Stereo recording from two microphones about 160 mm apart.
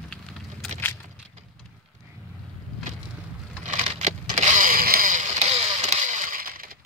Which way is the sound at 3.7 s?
45° right (ahead or behind).